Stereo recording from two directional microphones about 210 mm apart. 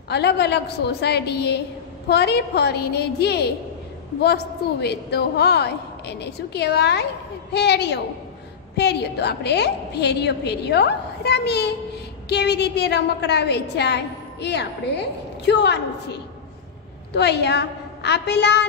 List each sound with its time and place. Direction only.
0.1 s a woman's voice: 50° left (ahead or behind)